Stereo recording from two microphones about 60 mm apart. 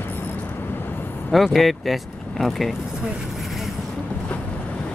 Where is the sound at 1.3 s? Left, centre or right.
Centre.